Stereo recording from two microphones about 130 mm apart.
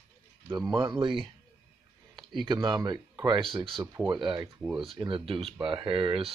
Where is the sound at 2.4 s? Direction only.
35° right (ahead or behind).